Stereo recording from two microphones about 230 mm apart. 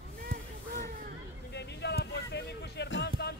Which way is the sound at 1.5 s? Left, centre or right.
Left.